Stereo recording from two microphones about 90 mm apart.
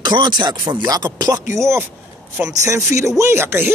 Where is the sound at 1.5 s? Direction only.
30° right (ahead or behind).